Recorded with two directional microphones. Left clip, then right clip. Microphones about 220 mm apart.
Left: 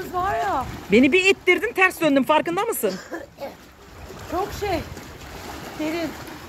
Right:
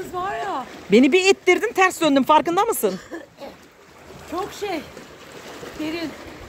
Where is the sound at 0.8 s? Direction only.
20° right (ahead or behind).